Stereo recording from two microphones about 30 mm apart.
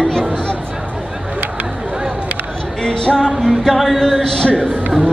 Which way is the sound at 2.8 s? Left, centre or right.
Left.